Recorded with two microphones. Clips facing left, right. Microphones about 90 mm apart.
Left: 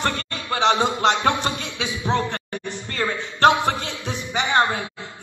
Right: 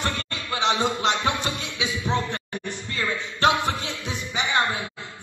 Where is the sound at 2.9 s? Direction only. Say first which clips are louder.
Left 3 dB; 50° left (ahead or behind).